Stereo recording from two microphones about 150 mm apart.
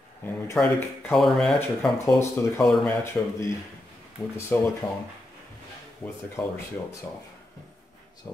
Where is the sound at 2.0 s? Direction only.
15° left (ahead or behind).